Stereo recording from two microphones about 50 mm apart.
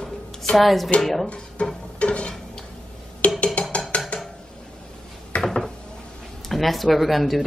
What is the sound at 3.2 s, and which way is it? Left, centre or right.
Music, left.